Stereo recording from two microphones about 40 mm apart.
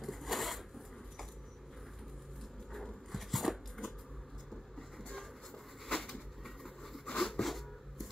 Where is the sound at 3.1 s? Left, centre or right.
Centre.